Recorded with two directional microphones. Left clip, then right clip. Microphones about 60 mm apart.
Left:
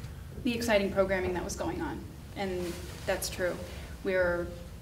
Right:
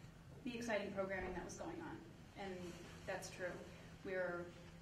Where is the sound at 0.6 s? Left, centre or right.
Centre.